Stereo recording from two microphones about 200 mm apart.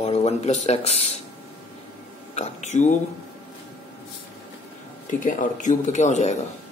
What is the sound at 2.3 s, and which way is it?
Speech, 35° left (ahead or behind).